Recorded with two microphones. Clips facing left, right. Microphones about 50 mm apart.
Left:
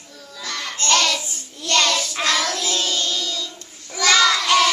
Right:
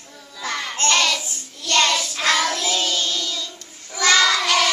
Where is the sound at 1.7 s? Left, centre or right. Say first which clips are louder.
Right 1 dB; centre.